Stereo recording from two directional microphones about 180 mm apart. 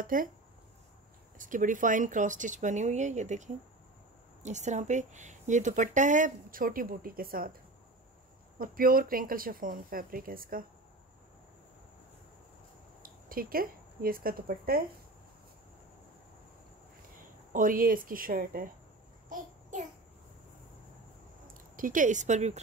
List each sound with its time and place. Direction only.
0.0 s speech: 50° right (ahead or behind)
1.4 s speech: 45° right (ahead or behind)
8.5 s speech: 55° right (ahead or behind)
13.0 s a woman's voice: 55° right (ahead or behind)
17.5 s speech: 50° right (ahead or behind)
19.7 s babbling: 45° right (ahead or behind)
21.7 s speech: 50° right (ahead or behind)